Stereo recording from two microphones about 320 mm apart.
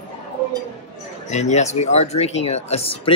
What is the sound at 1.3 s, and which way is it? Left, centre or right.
Speech, left.